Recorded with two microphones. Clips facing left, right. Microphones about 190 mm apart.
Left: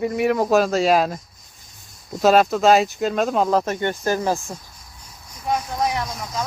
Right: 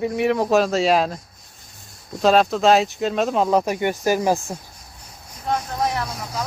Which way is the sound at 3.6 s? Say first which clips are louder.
Right 2 dB; 10° right (ahead or behind).